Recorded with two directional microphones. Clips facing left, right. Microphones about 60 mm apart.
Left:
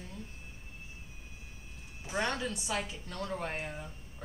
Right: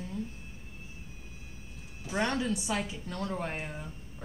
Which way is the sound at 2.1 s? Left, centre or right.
Centre.